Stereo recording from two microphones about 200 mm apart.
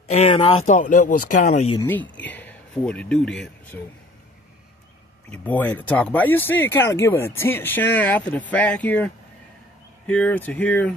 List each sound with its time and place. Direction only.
0.1 s speech: 30° left (ahead or behind)
0.7 s speech: 40° left (ahead or behind)
1.9 s speech: 5° left (ahead or behind)
5.3 s speech: 10° left (ahead or behind)